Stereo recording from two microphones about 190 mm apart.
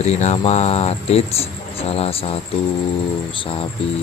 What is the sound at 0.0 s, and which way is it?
Speech, 35° left (ahead or behind).